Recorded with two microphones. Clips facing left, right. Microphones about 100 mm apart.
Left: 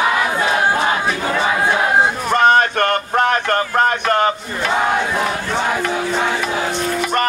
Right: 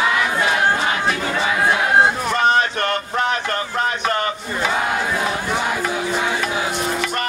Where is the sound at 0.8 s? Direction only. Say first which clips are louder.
Left 2 dB; 30° left (ahead or behind).